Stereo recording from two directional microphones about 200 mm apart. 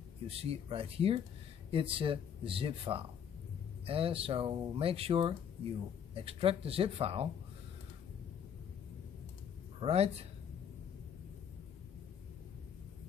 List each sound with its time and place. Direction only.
0.3 s speech: 30° right (ahead or behind)
9.8 s speech: 30° right (ahead or behind)